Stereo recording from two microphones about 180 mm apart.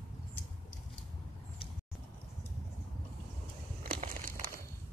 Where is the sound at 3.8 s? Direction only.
55° right (ahead or behind).